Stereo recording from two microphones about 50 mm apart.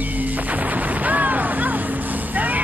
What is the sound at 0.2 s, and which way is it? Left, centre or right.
Music, right.